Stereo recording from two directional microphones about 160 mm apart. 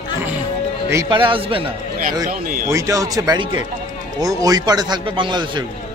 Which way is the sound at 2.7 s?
20° right (ahead or behind).